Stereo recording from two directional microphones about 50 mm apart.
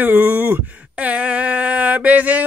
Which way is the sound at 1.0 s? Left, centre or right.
Right.